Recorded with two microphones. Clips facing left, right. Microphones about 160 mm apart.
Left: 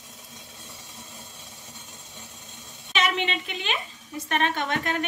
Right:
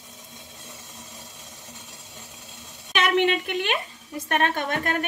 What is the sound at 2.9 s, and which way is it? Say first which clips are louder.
Speech: right 5 dB; 55° right (ahead or behind).